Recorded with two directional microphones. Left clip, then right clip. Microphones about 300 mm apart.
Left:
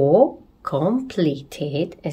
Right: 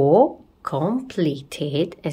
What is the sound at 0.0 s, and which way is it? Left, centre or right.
A woman's voice, centre.